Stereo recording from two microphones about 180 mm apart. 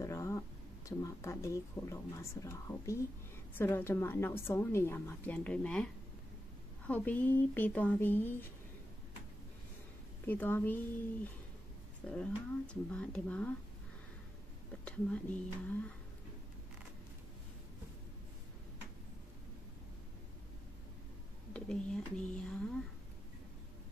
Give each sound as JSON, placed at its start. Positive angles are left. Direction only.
{"t": 0.0, "sound": "a sound", "side_deg": 15}
{"t": 0.8, "sound": "a woman's voice", "side_deg": 15}
{"t": 6.9, "sound": "a woman's voice", "side_deg": 10}
{"t": 10.2, "sound": "a woman's voice", "side_deg": 10}
{"t": 12.1, "sound": "speech", "side_deg": 5}
{"t": 14.9, "sound": "a woman's voice", "side_deg": 5}
{"t": 21.5, "sound": "speech", "side_deg": 5}